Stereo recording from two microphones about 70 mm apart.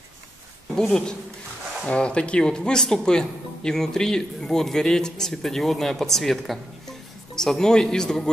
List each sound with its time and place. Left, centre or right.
0.7 s speech: centre